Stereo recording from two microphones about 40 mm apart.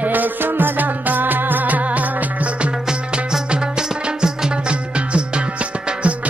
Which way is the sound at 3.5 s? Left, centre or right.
Centre.